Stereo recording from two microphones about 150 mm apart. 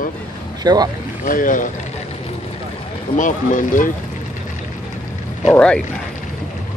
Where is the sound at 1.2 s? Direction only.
65° left (ahead or behind).